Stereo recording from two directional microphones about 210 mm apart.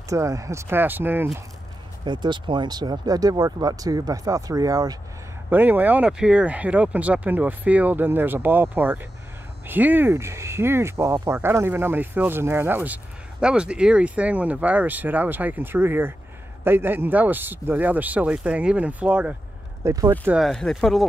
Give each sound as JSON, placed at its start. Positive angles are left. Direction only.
{"t": 0.1, "sound": "speech", "side_deg": -15}
{"t": 2.0, "sound": "speech", "side_deg": -20}
{"t": 20.3, "sound": "speech", "side_deg": 0}